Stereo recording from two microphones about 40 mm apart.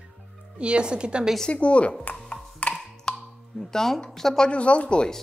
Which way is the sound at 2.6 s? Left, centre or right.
Left.